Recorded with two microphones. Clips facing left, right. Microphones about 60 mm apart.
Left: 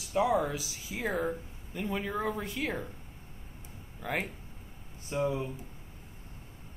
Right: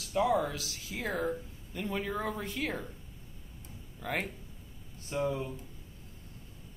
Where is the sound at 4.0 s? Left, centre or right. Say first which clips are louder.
Left 1 dB; centre.